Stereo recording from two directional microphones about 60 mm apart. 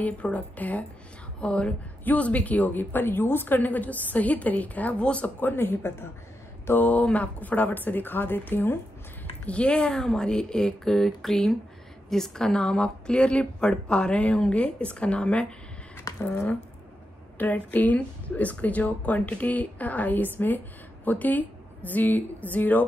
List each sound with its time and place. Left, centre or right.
0.0 s a woman's voice: left
6.7 s speech: left
9.5 s a woman's voice: centre
16.0 s squish: left
16.3 s speech: left